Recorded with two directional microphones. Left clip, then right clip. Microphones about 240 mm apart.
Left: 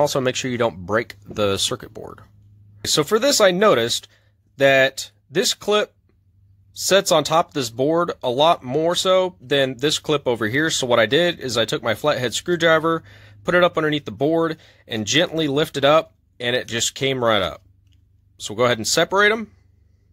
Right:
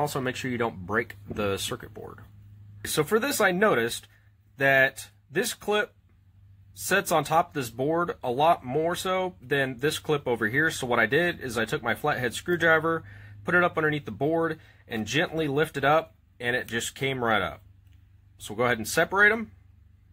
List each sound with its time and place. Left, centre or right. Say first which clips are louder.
0.0 s speech: left 9 dB; left